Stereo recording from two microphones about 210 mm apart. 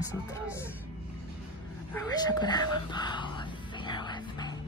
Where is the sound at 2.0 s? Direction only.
20° left (ahead or behind).